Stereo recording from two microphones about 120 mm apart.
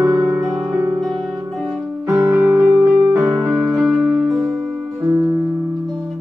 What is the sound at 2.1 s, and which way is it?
Music, 5° right (ahead or behind).